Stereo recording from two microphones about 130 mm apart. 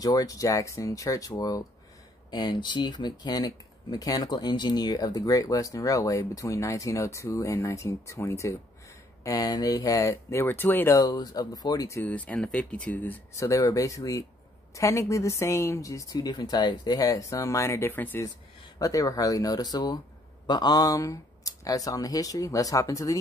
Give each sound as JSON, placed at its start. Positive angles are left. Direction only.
{"t": 0.0, "sound": "speech", "side_deg": 30}
{"t": 11.0, "sound": "speech", "side_deg": 30}
{"t": 12.0, "sound": "speech", "side_deg": 10}
{"t": 13.3, "sound": "speech", "side_deg": 25}
{"t": 18.8, "sound": "speech", "side_deg": 25}